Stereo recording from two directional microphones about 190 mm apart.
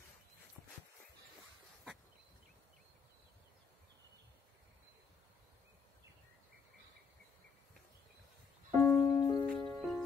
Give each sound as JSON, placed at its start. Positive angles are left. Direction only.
{"t": 8.8, "sound": "music", "side_deg": 15}
{"t": 9.5, "sound": "music", "side_deg": 0}